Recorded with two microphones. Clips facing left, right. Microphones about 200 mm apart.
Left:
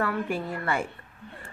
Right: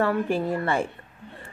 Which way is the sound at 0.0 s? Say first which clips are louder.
Right 5 dB; 30° right (ahead or behind).